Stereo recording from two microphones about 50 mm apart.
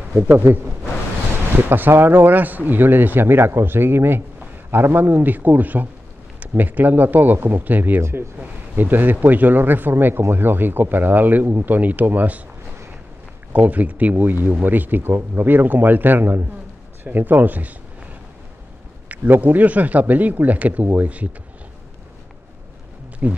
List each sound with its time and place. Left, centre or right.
0.3 s speech: right
1.7 s speech: right
8.0 s speech: right
8.7 s speech: right
13.5 s speech: right
19.4 s speech: right
23.2 s speech: right